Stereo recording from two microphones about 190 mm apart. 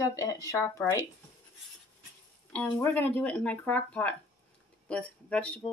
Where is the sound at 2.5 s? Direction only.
10° left (ahead or behind).